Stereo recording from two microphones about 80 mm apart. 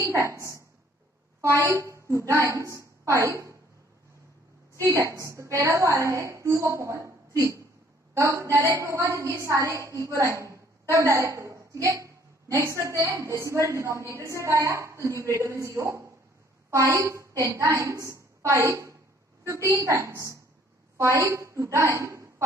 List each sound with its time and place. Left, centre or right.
0.1 s a woman's voice: right
1.7 s a woman's voice: right
5.2 s a woman's voice: right